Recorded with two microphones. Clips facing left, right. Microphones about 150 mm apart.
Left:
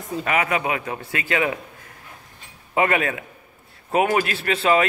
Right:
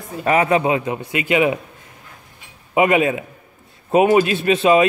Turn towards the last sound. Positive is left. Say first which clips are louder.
# right 5 dB
turn(degrees=-20)  # may be behind; listen again after turning